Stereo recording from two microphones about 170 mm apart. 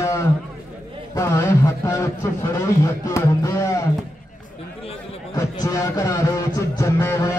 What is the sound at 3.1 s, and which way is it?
Music, 15° left (ahead or behind).